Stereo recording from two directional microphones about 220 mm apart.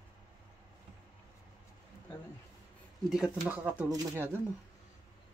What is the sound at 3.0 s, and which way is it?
Speech, 5° right (ahead or behind).